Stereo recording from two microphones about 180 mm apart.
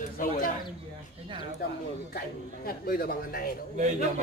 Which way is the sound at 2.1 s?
55° left (ahead or behind).